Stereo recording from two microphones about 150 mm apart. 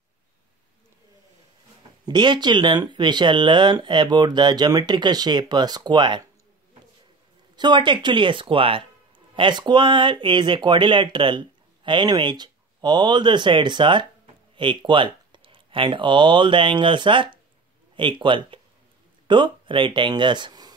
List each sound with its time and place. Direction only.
2.0 s speech: 30° right (ahead or behind)
7.5 s speech: 30° right (ahead or behind)